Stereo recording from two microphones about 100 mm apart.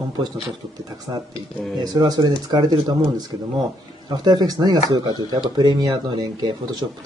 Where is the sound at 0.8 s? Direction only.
40° right (ahead or behind).